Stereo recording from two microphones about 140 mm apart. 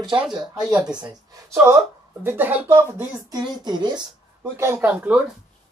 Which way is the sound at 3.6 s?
30° right (ahead or behind).